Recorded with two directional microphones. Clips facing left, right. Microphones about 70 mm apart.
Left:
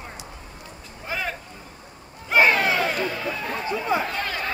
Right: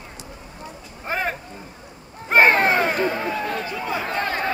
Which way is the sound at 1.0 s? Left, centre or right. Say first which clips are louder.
Right 4 dB; right.